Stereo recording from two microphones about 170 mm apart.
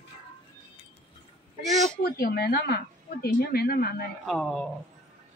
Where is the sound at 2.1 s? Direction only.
65° left (ahead or behind).